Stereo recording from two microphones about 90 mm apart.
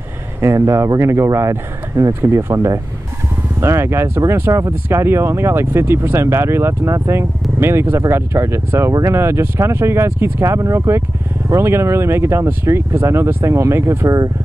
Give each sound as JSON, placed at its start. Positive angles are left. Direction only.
{"t": 0.4, "sound": "speech", "side_deg": -35}